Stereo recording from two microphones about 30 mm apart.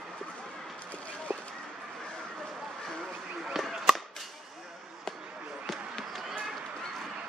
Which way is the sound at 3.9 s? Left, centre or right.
Centre.